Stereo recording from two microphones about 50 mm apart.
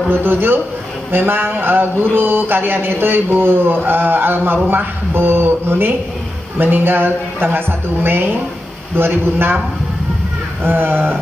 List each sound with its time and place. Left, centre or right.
0.1 s a man's voice: right
10.6 s a man's voice: right
10.9 s a sound: right